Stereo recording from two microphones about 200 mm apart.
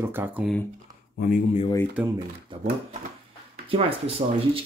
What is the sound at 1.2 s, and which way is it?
Speech, 40° left (ahead or behind).